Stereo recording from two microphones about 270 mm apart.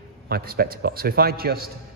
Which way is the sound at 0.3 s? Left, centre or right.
Right.